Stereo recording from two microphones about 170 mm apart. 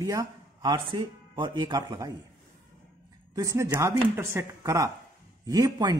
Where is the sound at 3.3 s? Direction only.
20° right (ahead or behind).